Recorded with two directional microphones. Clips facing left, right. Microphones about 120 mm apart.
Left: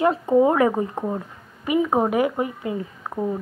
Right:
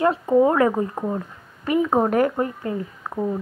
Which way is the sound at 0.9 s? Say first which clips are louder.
Right 1 dB; 5° left (ahead or behind).